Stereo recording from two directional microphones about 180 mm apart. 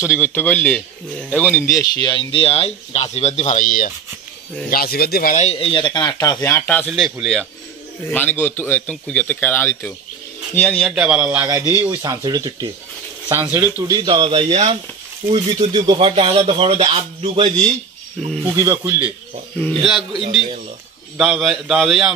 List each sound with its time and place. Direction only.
0.0 s a man's voice: 15° left (ahead or behind)
6.9 s a man's voice: centre (ahead or behind)
13.8 s speech: 25° right (ahead or behind)
18.4 s speech: 15° right (ahead or behind)
19.6 s speech: centre (ahead or behind)
21.2 s speech: centre (ahead or behind)